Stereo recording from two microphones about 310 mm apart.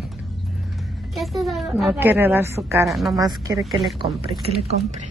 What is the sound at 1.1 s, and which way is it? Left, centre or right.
A woman's voice, centre.